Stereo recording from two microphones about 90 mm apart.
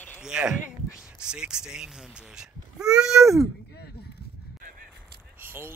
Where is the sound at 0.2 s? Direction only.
5° right (ahead or behind).